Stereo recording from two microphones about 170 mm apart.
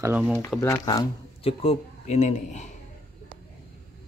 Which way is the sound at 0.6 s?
20° left (ahead or behind).